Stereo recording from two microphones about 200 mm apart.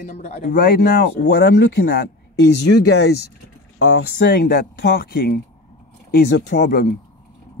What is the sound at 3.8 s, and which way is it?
Speech, 90° left.